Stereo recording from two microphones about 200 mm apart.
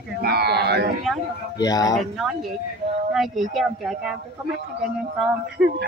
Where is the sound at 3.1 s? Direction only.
Centre (ahead or behind).